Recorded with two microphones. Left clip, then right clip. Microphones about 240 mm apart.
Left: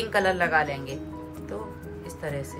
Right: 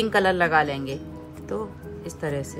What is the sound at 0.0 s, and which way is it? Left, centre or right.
Speech, right.